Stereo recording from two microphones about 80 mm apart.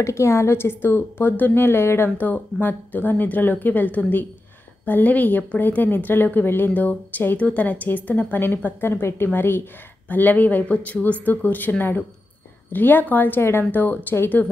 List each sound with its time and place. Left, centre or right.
0.0 s a woman's voice: left
12.7 s a woman's voice: left